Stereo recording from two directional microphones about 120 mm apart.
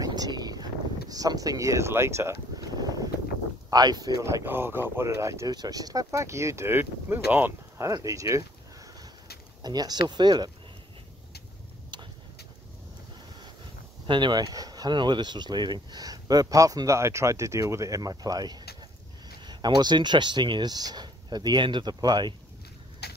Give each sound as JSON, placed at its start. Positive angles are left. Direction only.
{"t": 0.0, "sound": "a sound", "side_deg": -35}
{"t": 3.7, "sound": "speech", "side_deg": -35}
{"t": 4.5, "sound": "speech", "side_deg": -20}
{"t": 9.6, "sound": "speech", "side_deg": -35}
{"t": 14.0, "sound": "speech", "side_deg": -40}